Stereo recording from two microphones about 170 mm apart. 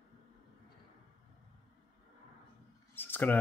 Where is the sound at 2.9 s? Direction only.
10° left (ahead or behind).